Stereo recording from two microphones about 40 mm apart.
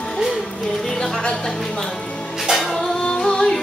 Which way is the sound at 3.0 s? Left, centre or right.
Left.